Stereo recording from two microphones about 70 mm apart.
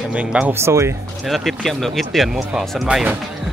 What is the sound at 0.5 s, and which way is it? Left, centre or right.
Speech, right.